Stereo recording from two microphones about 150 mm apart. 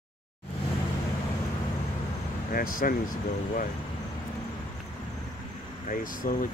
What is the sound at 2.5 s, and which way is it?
Speech, 70° left (ahead or behind).